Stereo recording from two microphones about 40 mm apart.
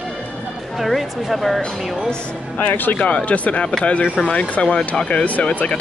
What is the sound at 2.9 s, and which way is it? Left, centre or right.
Speech, left.